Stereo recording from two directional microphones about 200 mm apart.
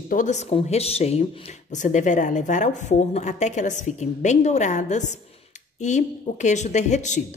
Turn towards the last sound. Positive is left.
turn(degrees=35)  # may be behind; listen again after turning